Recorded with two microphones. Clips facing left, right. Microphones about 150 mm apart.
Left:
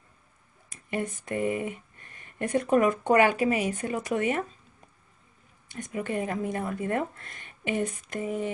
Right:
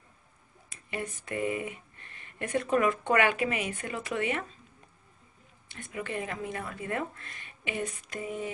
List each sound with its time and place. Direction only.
0.7 s a sound: 45° left (ahead or behind)
1.2 s speech: 45° left (ahead or behind)
5.7 s speech: 40° left (ahead or behind)